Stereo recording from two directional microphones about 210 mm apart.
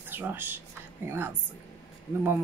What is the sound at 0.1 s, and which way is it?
Speech, 10° right (ahead or behind).